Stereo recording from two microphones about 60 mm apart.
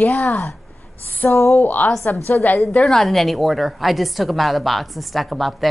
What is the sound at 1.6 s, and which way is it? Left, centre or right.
Speech, left.